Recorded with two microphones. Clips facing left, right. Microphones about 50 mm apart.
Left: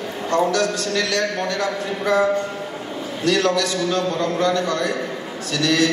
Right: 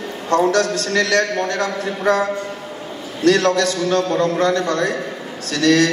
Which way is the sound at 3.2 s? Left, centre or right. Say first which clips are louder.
Right 4 dB; right.